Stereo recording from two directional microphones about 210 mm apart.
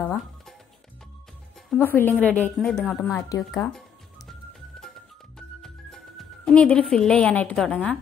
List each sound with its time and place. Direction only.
0.0 s music: 10° left (ahead or behind)
1.7 s a woman's voice: 10° left (ahead or behind)
5.6 s music: centre (ahead or behind)